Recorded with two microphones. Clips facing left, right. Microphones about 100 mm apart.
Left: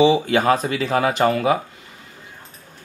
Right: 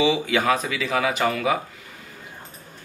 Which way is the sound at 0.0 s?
35° left (ahead or behind).